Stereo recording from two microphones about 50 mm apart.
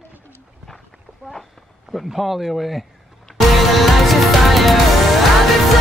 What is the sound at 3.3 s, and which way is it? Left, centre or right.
Music, centre.